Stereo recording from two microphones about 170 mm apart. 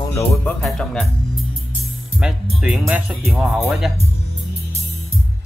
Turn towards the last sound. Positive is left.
turn(degrees=-5)  # may be behind; listen again after turning